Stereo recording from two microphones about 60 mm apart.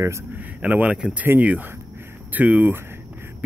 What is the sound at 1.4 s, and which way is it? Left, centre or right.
Speech, right.